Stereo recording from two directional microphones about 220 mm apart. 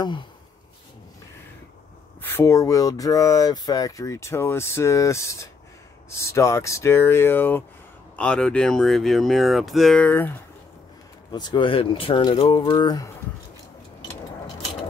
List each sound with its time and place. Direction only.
2.2 s speech: 10° left (ahead or behind)
11.3 s speech: 20° left (ahead or behind)